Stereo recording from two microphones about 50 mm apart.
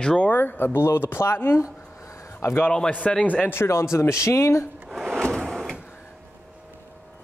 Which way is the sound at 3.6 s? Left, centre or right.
Left.